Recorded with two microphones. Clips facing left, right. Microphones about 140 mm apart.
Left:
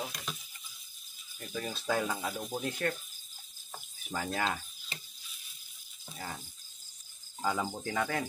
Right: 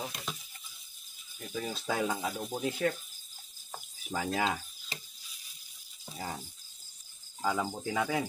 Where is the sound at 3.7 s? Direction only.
10° right (ahead or behind).